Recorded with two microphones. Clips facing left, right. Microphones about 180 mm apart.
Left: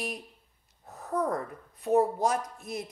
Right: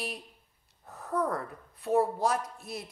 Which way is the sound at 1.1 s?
15° left (ahead or behind).